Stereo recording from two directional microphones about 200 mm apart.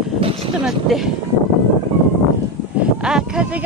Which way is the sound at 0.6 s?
Centre (ahead or behind).